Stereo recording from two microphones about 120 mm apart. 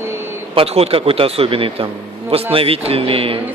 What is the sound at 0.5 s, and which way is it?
Speech, 55° right (ahead or behind).